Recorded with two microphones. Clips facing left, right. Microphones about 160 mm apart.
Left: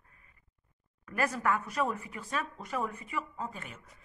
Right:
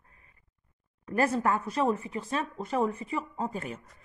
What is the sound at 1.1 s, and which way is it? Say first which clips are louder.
Speech: right 4 dB; 30° right (ahead or behind).